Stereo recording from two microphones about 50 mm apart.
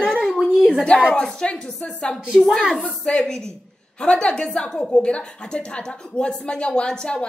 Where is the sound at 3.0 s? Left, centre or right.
Centre.